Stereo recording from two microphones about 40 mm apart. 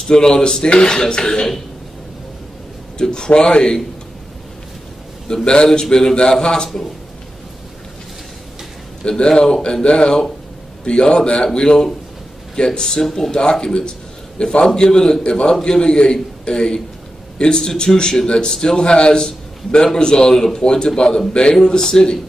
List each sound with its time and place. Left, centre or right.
0.1 s a man's voice: centre
3.0 s a man's voice: left
5.3 s a man's voice: left
9.0 s speech: centre
9.8 s a man's voice: left